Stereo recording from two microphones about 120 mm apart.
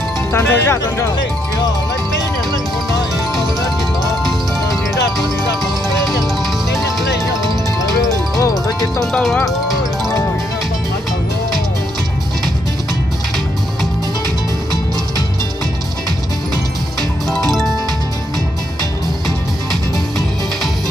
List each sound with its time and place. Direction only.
0.3 s speech: 20° left (ahead or behind)
4.1 s music: centre (ahead or behind)
8.4 s music: 30° left (ahead or behind)
9.0 s speech: 5° left (ahead or behind)